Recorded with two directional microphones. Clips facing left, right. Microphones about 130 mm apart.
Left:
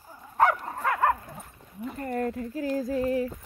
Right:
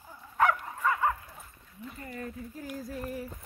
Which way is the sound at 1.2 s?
50° left (ahead or behind).